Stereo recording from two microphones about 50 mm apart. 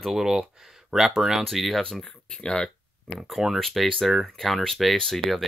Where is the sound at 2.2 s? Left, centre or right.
Centre.